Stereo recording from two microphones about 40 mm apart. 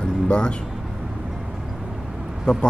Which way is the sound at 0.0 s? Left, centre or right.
Left.